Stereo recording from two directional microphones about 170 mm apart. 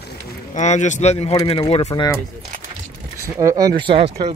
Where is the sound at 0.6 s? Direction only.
45° left (ahead or behind).